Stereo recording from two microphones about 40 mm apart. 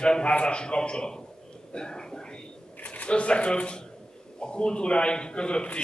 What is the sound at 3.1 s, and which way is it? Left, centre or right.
Speech, left.